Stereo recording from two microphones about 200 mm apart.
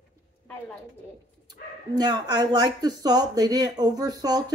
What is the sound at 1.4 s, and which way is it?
Speech, 20° right (ahead or behind).